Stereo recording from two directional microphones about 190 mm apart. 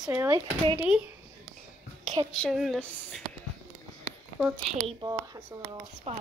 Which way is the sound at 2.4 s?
Centre (ahead or behind).